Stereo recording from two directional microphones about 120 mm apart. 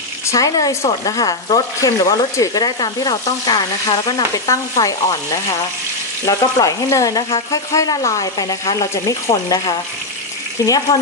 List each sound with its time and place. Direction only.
0.3 s speech: 30° left (ahead or behind)